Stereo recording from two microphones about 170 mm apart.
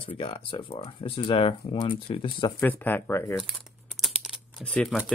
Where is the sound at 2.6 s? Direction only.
10° left (ahead or behind).